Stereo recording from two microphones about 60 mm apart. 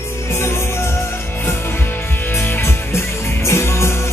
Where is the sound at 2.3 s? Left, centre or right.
Left.